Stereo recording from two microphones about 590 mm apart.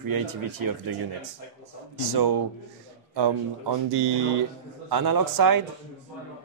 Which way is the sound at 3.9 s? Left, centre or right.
Right.